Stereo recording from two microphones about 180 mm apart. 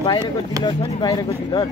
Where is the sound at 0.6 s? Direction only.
25° left (ahead or behind).